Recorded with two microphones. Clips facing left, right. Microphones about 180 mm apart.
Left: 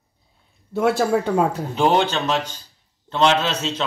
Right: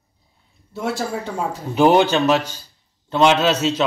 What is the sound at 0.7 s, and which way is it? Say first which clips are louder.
Speech: left 6 dB; 65° left (ahead or behind).